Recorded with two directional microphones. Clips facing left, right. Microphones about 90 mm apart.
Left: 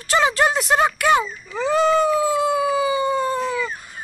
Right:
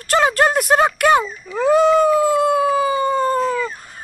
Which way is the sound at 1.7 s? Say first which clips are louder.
Right 3 dB; 5° right (ahead or behind).